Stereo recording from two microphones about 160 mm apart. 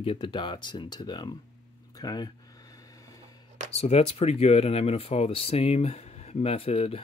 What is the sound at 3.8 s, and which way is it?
Speech, 40° left (ahead or behind).